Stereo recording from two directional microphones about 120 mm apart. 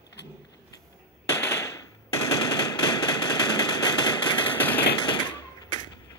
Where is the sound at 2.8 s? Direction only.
35° left (ahead or behind).